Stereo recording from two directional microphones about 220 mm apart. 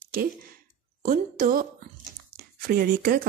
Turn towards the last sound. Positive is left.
turn(degrees=-45)  # may be behind; listen again after turning